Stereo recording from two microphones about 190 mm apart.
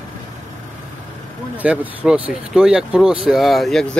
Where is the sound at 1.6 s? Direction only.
5° right (ahead or behind).